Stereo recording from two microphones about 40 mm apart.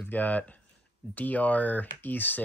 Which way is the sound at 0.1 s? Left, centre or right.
Left.